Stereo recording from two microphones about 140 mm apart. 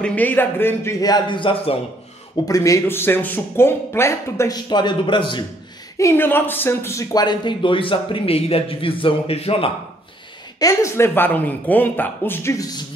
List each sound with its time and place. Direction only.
0.0 s speech: 10° left (ahead or behind)
1.0 s speech: 30° left (ahead or behind)
2.4 s speech: 25° left (ahead or behind)
5.9 s speech: 20° left (ahead or behind); by 9.7 s 45° left (ahead or behind)
10.6 s speech: 20° left (ahead or behind)